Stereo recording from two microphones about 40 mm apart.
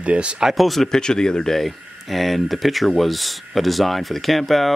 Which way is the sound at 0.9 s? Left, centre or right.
Centre.